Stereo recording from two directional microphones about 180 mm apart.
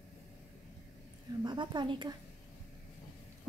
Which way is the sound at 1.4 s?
25° right (ahead or behind).